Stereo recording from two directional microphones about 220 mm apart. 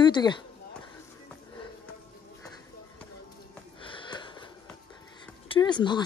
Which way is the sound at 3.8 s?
20° left (ahead or behind).